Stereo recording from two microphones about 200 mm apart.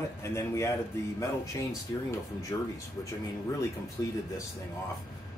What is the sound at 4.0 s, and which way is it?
Speech, 20° left (ahead or behind).